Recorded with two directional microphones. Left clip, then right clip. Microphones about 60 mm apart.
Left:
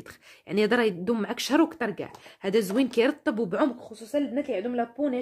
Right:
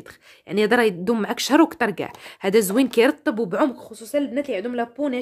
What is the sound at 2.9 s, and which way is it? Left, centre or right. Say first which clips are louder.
Speech: right 6 dB; right.